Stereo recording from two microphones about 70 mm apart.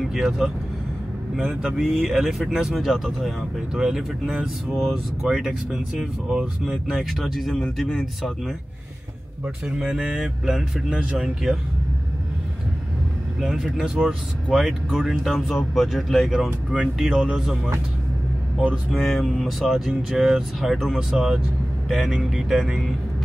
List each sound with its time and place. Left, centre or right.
0.0 s speech: centre
9.8 s speech: centre
13.4 s speech: centre
18.9 s speech: centre